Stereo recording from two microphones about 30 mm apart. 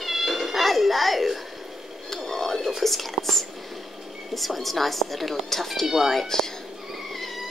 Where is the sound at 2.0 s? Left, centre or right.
Centre.